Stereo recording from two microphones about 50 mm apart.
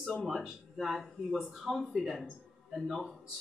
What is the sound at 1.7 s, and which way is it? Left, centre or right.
A man's voice, centre.